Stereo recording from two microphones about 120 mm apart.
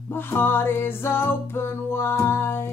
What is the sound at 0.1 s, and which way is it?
Music, 20° left (ahead or behind).